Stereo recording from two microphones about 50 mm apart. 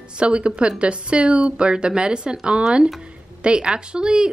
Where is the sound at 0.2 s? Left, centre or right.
Right.